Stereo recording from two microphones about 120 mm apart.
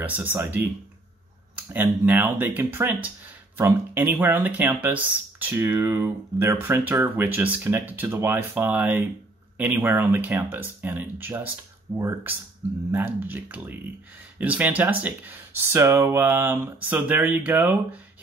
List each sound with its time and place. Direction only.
0.0 s speech: 15° right (ahead or behind)
1.7 s speech: 15° right (ahead or behind)